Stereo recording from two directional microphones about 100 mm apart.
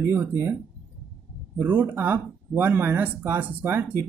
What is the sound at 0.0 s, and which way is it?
Speech, 20° right (ahead or behind).